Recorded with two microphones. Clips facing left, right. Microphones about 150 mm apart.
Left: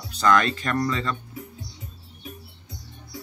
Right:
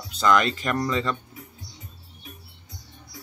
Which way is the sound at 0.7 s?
20° right (ahead or behind).